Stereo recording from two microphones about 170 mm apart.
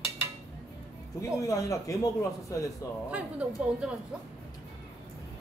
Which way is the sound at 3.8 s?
5° right (ahead or behind).